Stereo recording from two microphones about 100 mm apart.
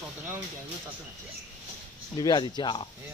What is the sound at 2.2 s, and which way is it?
Speech, 45° left (ahead or behind).